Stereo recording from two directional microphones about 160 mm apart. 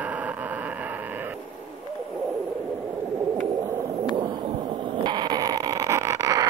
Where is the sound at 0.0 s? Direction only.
10° right (ahead or behind).